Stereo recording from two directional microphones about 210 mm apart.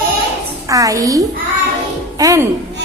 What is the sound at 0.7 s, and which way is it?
A woman's voice, 15° right (ahead or behind).